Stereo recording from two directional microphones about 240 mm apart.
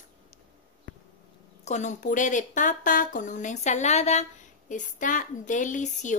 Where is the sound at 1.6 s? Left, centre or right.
Left.